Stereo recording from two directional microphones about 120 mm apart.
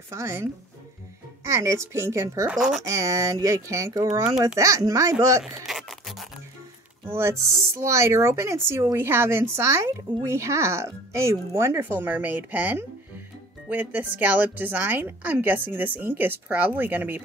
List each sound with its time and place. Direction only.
0.1 s speech: 25° right (ahead or behind)
2.5 s speech: centre (ahead or behind)
2.9 s speech: 25° right (ahead or behind)
5.4 s a sound: centre (ahead or behind)
7.2 s speech: 20° right (ahead or behind)